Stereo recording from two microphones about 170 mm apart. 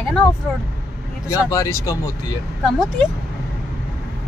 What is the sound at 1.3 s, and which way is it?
Speech, 20° left (ahead or behind).